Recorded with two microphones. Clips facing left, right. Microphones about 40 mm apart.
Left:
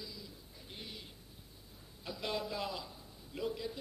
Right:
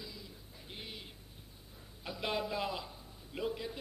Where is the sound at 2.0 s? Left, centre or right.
Right.